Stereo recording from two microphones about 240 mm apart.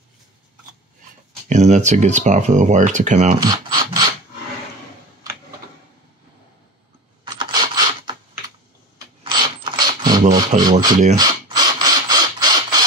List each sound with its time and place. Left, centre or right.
1.5 s speech: right
3.3 s mechanisms: centre
7.2 s computer keyboard: centre
8.9 s keys jangling: centre
10.6 s speech: centre
11.1 s mechanisms: centre